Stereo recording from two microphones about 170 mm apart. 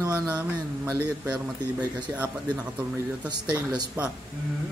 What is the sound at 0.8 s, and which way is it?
A man's voice, 15° right (ahead or behind).